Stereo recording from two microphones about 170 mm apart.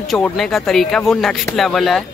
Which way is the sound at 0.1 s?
Centre (ahead or behind).